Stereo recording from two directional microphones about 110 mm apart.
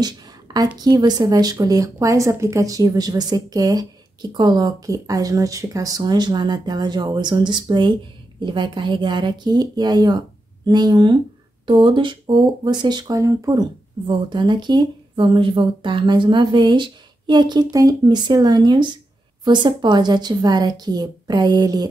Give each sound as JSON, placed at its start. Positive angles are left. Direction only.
{"t": 0.0, "sound": "a sound", "side_deg": -40}
{"t": 0.7, "sound": "speech", "side_deg": -40}
{"t": 14.0, "sound": "speech", "side_deg": -45}